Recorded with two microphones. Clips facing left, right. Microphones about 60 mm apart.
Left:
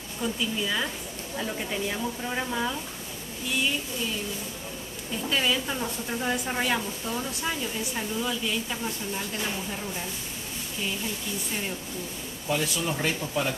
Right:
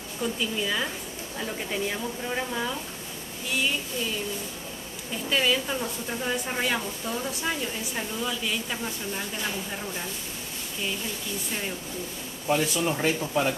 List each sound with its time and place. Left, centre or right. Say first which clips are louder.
0.2 s a woman's voice: even; centre
5.3 s a woman's voice: right 2 dB; centre
12.5 s speech: right 2 dB; right